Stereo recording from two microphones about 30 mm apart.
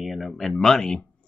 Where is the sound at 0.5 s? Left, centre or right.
Centre.